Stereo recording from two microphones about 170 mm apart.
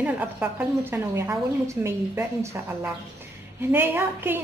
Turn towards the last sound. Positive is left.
turn(degrees=-10)  # may be behind; listen again after turning